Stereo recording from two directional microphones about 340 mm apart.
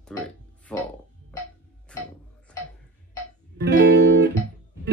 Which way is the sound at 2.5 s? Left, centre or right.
Centre.